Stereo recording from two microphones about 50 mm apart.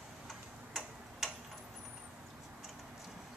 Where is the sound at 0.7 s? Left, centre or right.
Centre.